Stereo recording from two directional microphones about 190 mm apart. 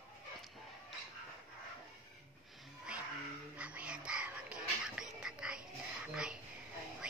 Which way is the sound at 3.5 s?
5° right (ahead or behind).